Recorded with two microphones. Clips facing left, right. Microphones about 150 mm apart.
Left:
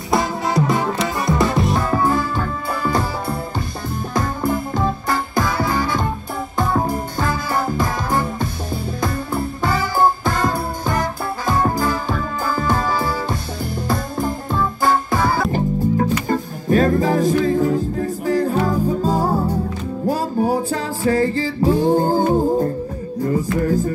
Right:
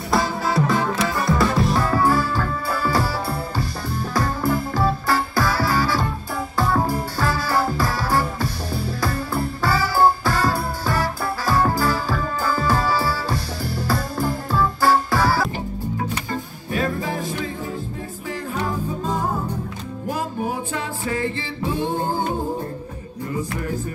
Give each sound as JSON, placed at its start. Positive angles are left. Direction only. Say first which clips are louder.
{"t": 0.1, "sound": "music", "louder": "left 2 dB", "side_deg": 20}
{"t": 15.5, "sound": "music", "louder": "left 9 dB", "side_deg": 45}